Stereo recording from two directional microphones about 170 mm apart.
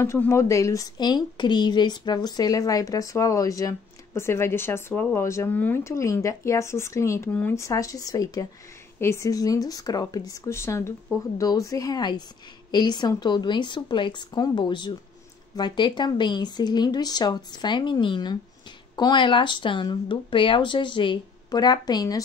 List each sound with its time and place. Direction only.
0.0 s a woman's voice: 15° left (ahead or behind)